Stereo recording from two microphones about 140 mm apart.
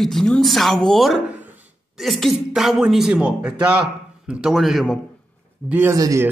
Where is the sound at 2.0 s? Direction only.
Centre (ahead or behind).